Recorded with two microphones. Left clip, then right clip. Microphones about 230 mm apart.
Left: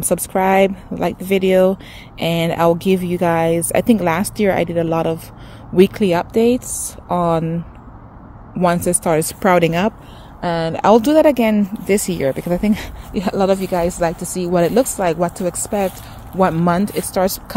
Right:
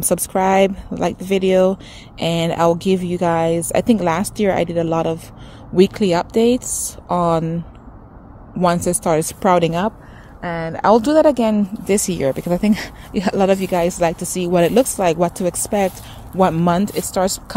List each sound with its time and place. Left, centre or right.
0.1 s speech: centre
10.7 s speech: centre